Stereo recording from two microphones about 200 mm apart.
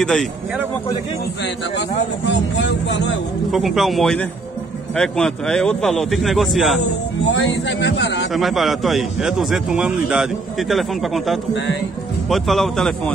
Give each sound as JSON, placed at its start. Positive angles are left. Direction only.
{"t": 0.0, "sound": "a man's voice", "side_deg": 0}
{"t": 1.8, "sound": "speech", "side_deg": 60}
{"t": 3.5, "sound": "a man's voice", "side_deg": 0}
{"t": 7.3, "sound": "speech", "side_deg": 65}
{"t": 8.3, "sound": "a man's voice", "side_deg": 0}